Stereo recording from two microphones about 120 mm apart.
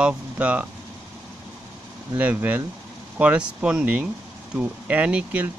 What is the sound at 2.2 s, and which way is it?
Speech, 15° right (ahead or behind).